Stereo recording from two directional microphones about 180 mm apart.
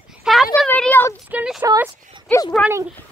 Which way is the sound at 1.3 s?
5° right (ahead or behind).